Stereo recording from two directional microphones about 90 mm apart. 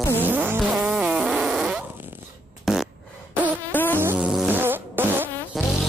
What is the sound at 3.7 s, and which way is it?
Buzz, 20° left (ahead or behind).